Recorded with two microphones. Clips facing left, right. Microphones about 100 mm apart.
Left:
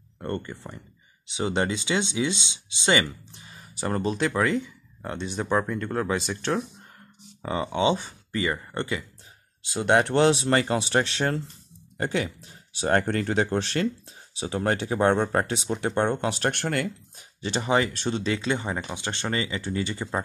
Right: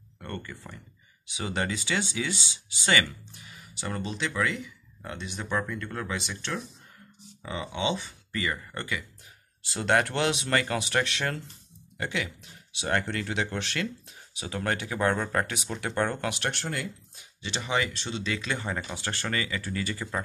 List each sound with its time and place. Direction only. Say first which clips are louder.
0.2 s speech: left 7 dB; 30° left (ahead or behind)
8.3 s speech: left 4 dB; 30° left (ahead or behind)
16.4 s speech: left 6 dB; 55° left (ahead or behind)
17.2 s speech: left 7 dB; 40° left (ahead or behind)
18.3 s speech: left 4 dB; 25° left (ahead or behind)